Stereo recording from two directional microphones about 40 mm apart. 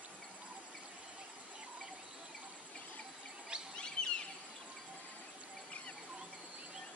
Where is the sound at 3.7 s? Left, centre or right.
Left.